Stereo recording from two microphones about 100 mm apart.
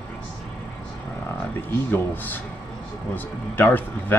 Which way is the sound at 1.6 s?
20° left (ahead or behind).